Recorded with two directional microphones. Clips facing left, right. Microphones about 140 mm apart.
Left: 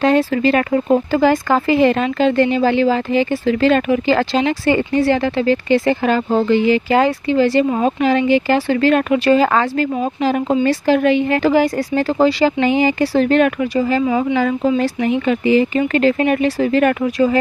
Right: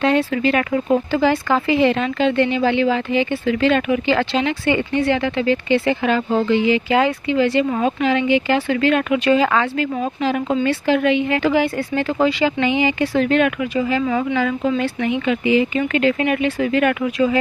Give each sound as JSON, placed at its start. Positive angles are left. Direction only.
{"t": 0.0, "sound": "speech", "side_deg": 40}